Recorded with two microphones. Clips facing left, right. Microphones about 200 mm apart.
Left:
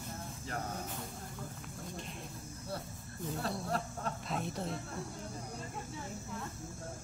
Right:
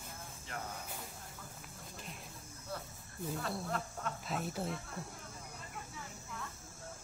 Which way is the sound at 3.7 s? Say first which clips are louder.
Left 3 dB; 35° left (ahead or behind).